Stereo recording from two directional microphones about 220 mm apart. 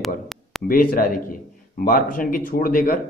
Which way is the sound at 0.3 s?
Centre (ahead or behind).